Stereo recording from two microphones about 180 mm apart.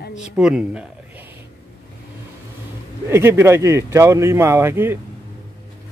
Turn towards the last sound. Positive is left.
turn(degrees=-15)  # may be behind; listen again after turning